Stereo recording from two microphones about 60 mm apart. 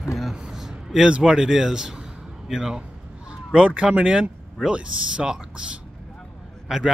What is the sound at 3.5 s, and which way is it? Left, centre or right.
Speech, centre.